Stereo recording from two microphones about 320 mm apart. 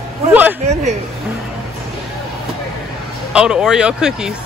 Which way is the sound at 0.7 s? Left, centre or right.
Right.